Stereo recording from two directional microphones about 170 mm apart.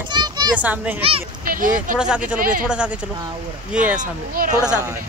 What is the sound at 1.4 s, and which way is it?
Speech, 55° right (ahead or behind).